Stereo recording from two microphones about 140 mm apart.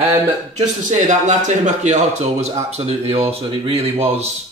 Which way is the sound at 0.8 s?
60° right (ahead or behind).